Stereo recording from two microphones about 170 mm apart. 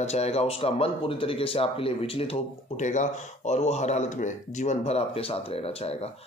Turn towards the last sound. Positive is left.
turn(degrees=35)  # may be behind; listen again after turning